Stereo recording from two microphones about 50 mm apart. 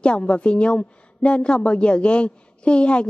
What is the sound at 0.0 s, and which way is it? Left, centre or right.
A woman's voice, left.